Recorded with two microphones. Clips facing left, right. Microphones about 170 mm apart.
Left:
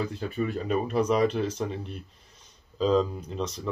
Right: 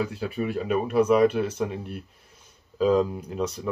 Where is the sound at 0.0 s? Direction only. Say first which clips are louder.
Right 2 dB; 5° right (ahead or behind).